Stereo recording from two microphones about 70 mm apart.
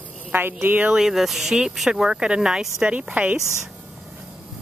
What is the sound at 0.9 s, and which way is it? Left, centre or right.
Speech, centre.